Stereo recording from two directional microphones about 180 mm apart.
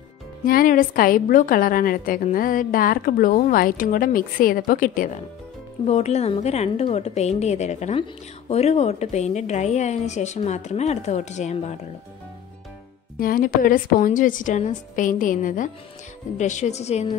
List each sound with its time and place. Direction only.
0.5 s a woman's voice: 50° left (ahead or behind)
13.2 s a woman's voice: 50° left (ahead or behind)